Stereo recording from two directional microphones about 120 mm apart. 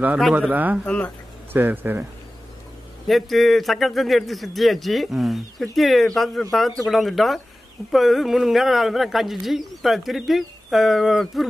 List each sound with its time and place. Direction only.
0.2 s speech: 10° right (ahead or behind)
0.8 s speech: 10° left (ahead or behind)
1.5 s speech: 15° right (ahead or behind)
3.1 s speech: centre (ahead or behind)